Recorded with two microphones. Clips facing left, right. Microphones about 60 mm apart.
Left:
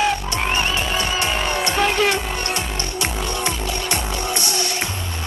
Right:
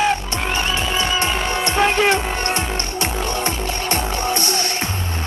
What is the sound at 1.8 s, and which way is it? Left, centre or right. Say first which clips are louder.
Music: right 2 dB; right.